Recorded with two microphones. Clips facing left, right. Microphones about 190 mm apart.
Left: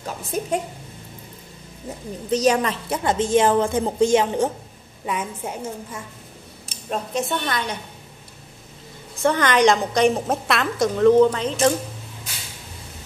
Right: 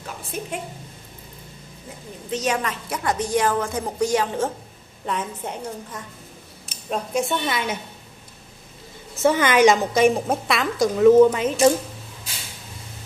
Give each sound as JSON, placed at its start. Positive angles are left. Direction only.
{"t": 0.3, "sound": "a woman's voice", "side_deg": 40}
{"t": 2.3, "sound": "a woman's voice", "side_deg": 35}
{"t": 5.0, "sound": "a woman's voice", "side_deg": 10}
{"t": 9.2, "sound": "a woman's voice", "side_deg": -5}